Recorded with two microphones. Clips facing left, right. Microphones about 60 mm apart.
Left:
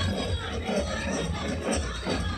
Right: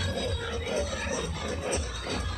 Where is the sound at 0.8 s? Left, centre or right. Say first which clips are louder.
Left 2 dB; left.